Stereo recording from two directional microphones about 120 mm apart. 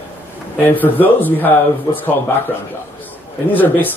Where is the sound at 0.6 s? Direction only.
15° left (ahead or behind).